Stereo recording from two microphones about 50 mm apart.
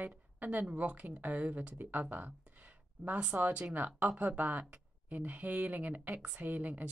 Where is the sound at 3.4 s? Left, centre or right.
Right.